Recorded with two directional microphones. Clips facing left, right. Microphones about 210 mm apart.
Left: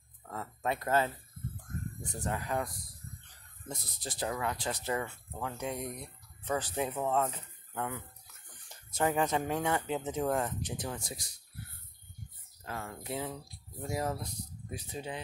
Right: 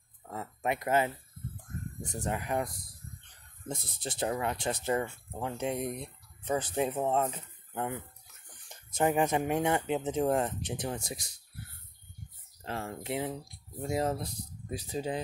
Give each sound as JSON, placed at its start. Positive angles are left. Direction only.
{"t": 0.2, "sound": "a sound", "side_deg": -15}
{"t": 2.2, "sound": "speech", "side_deg": -20}
{"t": 12.6, "sound": "speech", "side_deg": -30}